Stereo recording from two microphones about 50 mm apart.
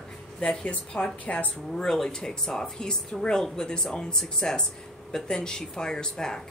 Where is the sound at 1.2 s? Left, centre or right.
Left.